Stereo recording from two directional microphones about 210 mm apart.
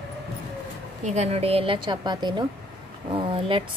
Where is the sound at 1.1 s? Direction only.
30° right (ahead or behind).